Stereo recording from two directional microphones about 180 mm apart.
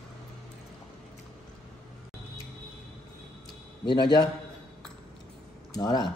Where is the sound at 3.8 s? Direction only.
25° left (ahead or behind).